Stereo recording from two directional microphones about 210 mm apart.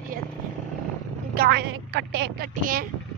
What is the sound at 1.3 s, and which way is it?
Speech, 50° right (ahead or behind).